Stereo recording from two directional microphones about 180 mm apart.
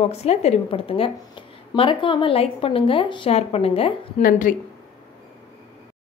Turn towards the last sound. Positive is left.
turn(degrees=50)  # may be behind; listen again after turning